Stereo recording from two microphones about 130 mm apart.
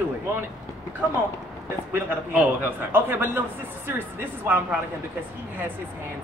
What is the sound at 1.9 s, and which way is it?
Speech, 15° right (ahead or behind).